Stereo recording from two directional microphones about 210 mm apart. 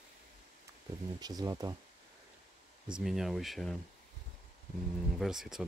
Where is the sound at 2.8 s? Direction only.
5° right (ahead or behind).